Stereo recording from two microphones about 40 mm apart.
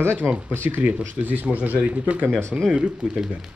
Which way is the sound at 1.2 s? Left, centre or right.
Right.